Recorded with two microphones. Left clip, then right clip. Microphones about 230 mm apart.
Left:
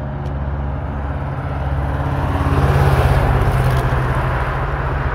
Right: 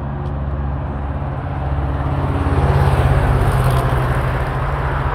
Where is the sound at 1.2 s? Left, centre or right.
Left.